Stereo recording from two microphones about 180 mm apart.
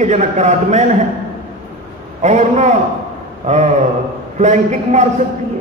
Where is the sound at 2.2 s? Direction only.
40° right (ahead or behind).